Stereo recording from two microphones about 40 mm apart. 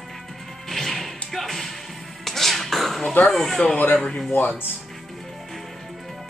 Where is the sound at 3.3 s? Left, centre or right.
Centre.